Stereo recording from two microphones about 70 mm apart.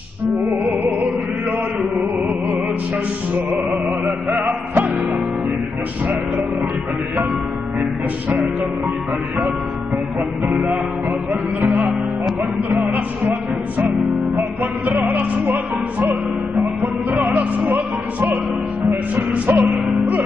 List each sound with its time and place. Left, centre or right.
0.5 s music: right
3.3 s music: right
12.6 s music: right
17.2 s music: right
19.1 s music: right
19.7 s speech: right